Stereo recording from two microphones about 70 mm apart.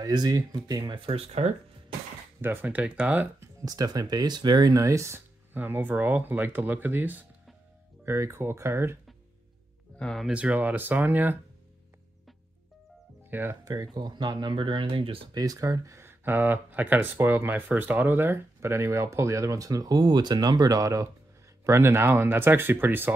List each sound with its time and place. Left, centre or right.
0.0 s speech: right
2.4 s speech: right
3.6 s speech: right
4.7 s speech: right
5.5 s speech: right
8.0 s speech: right
9.9 s speech: centre
10.3 s speech: centre
13.3 s speech: right
13.7 s speech: right
15.3 s speech: right
16.1 s speech: right
21.6 s speech: right